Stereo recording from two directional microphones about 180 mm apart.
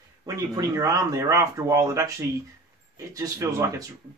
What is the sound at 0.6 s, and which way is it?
Speech, 20° right (ahead or behind).